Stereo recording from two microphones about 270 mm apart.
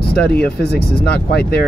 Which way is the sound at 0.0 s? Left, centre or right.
Left.